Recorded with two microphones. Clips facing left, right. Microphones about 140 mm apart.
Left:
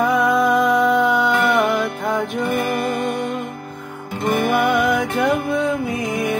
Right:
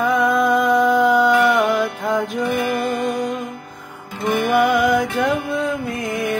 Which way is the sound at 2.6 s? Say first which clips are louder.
Even; 35° left (ahead or behind).